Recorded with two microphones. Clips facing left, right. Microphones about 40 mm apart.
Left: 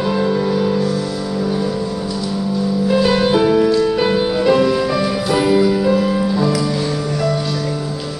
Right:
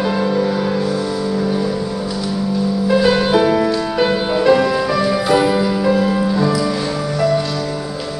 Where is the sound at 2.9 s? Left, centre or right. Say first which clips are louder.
Right 1 dB; centre.